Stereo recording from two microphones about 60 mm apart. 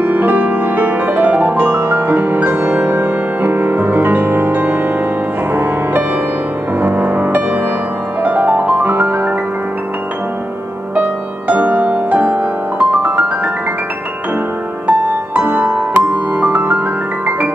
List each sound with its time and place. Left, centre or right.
0.0 s music: right
11.0 s music: right
14.9 s music: right